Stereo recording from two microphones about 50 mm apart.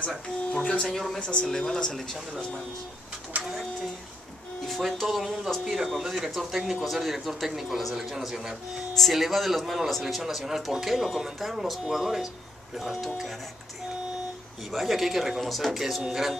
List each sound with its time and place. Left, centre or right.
0.5 s speech: centre
0.8 s speech: centre
3.3 s speech: right
4.9 s speech: centre
14.7 s speech: centre